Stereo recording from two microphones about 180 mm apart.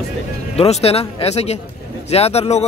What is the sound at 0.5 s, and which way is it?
Speech, 35° left (ahead or behind).